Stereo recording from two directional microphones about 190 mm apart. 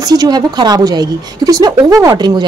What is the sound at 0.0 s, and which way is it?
A woman's voice, 20° right (ahead or behind).